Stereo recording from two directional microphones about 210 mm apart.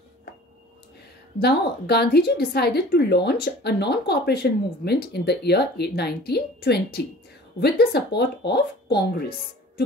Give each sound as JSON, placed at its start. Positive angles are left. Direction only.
{"t": 1.4, "sound": "a woman's voice", "side_deg": 50}